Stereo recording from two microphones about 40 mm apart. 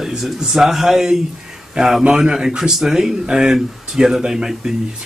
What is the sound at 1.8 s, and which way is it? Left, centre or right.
A man's voice, right.